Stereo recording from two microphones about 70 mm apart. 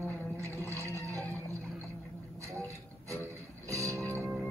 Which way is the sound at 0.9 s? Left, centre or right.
Right.